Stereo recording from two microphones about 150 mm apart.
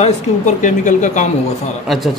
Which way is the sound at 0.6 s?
55° left (ahead or behind).